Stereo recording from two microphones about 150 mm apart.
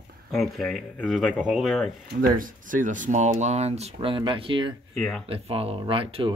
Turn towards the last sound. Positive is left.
turn(degrees=-35)  # may be behind; listen again after turning